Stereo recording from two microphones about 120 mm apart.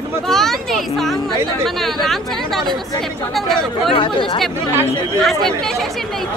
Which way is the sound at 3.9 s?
45° left (ahead or behind).